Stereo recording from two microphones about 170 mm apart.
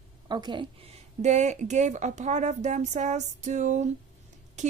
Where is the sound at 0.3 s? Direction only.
25° right (ahead or behind).